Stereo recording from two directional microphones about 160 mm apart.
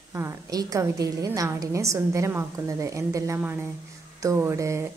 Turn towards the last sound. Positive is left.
turn(degrees=-20)  # may be behind; listen again after turning